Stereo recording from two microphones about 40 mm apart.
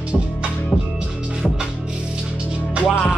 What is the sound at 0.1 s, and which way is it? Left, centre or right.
Music, centre.